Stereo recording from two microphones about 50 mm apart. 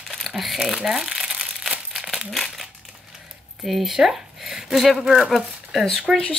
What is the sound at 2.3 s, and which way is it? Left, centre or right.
Crumpling, centre.